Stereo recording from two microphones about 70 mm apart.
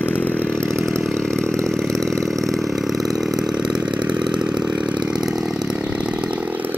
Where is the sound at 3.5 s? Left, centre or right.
Centre.